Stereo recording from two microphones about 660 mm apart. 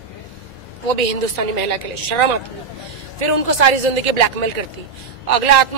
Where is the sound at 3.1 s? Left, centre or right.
Right.